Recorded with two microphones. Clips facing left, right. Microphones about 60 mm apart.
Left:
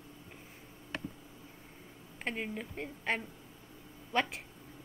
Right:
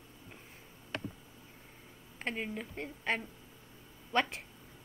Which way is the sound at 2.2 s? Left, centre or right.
Centre.